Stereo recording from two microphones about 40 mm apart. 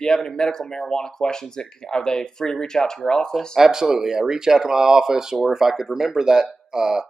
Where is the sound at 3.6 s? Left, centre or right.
Centre.